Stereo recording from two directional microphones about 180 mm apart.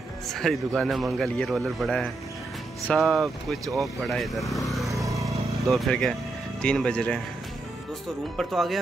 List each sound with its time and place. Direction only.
0.3 s speech: centre (ahead or behind)
4.9 s vehicle: 20° right (ahead or behind)
5.6 s speech: centre (ahead or behind)
8.4 s speech: centre (ahead or behind)